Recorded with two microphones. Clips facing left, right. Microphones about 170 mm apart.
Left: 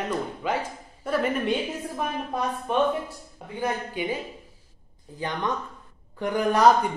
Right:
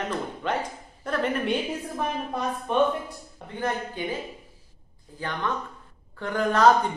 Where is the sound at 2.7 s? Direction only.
5° left (ahead or behind).